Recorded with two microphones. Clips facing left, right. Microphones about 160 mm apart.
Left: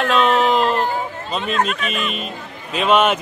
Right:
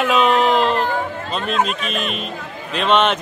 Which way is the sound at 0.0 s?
5° right (ahead or behind).